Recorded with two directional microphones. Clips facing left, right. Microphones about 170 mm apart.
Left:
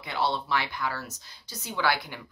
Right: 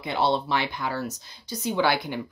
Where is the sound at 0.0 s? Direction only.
20° right (ahead or behind).